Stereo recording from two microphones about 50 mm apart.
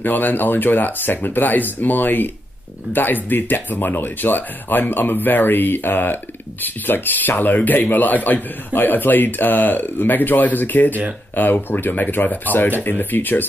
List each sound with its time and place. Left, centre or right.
0.0 s speech: left